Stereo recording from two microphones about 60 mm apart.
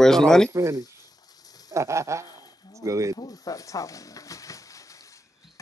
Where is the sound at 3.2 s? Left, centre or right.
Left.